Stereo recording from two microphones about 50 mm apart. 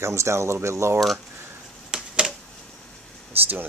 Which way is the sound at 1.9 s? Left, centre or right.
Centre.